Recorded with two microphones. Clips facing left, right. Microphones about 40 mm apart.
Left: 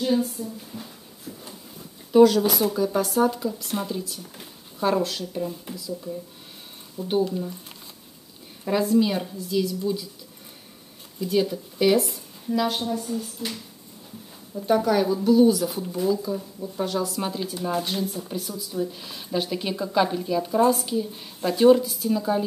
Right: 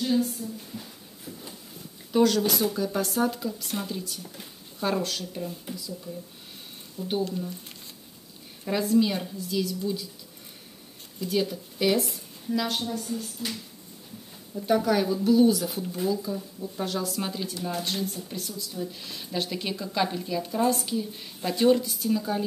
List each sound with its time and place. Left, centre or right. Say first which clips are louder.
0.0 s a sound: left 2 dB; centre
2.1 s speech: left 6 dB; centre
7.1 s speech: left 5 dB; centre
8.6 s speech: left 2 dB; centre
11.1 s speech: left 4 dB; centre
16.3 s speech: left 2 dB; centre
16.7 s speech: left 4 dB; centre